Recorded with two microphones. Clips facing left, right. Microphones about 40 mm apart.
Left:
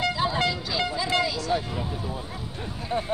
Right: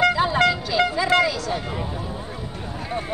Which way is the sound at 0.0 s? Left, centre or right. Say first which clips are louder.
Right 7 dB; right.